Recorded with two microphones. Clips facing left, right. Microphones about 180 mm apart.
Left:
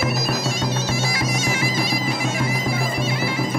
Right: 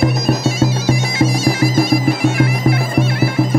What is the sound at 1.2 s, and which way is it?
Bagpipes, 30° right (ahead or behind).